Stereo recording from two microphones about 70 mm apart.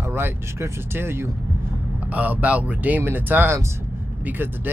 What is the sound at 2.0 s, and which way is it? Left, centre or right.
Speech, right.